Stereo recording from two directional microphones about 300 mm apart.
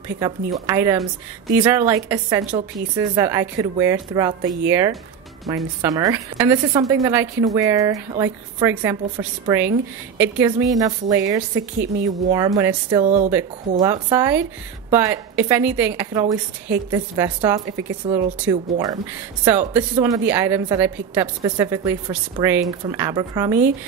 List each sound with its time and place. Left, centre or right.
0.1 s a woman's voice: centre
13.0 s speech: right
13.7 s a woman's voice: centre